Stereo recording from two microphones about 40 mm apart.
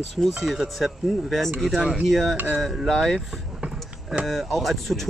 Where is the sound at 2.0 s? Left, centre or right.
Centre.